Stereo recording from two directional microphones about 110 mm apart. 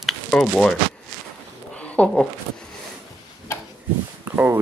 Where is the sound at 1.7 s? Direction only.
10° left (ahead or behind).